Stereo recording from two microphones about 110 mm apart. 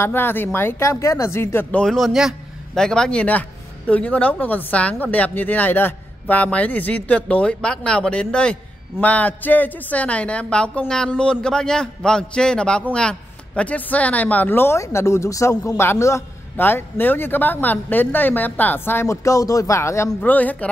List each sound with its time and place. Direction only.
0.0 s a man's voice: 20° left (ahead or behind)
1.8 s a man's voice: centre (ahead or behind); by 20.1 s 25° left (ahead or behind)
20.1 s a man's voice: 10° left (ahead or behind)